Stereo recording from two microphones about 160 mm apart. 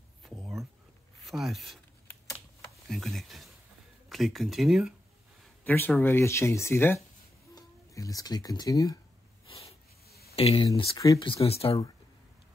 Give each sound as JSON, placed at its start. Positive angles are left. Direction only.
{"t": 0.2, "sound": "a sound", "side_deg": 0}
{"t": 1.2, "sound": "shuffling cards", "side_deg": 0}
{"t": 2.9, "sound": "speech", "side_deg": 0}
{"t": 5.6, "sound": "speech", "side_deg": 10}
{"t": 9.5, "sound": "a sound", "side_deg": 40}
{"t": 10.0, "sound": "a sound", "side_deg": 75}
{"t": 10.3, "sound": "speech", "side_deg": 35}
{"t": 11.0, "sound": "speech", "side_deg": 20}
{"t": 11.2, "sound": "speech", "side_deg": 40}